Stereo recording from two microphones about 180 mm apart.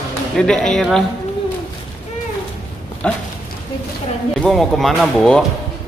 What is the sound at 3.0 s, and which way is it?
Speech, 5° left (ahead or behind).